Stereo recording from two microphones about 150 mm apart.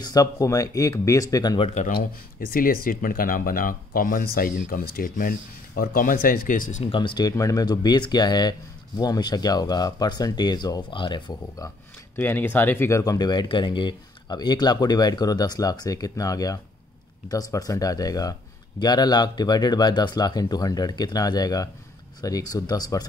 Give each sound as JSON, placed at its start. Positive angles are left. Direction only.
{"t": 0.0, "sound": "speech", "side_deg": 25}
{"t": 1.6, "sound": "speech", "side_deg": 50}
{"t": 1.9, "sound": "speech", "side_deg": 75}
{"t": 6.8, "sound": "speech", "side_deg": 35}
{"t": 12.2, "sound": "speech", "side_deg": 15}